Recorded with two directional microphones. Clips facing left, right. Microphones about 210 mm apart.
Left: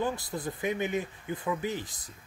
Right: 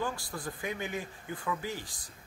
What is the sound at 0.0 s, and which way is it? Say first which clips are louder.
Speech: left 4 dB; 20° left (ahead or behind).